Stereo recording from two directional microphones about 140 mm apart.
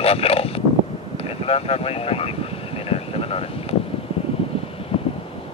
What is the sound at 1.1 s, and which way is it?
Vehicle, 45° left (ahead or behind).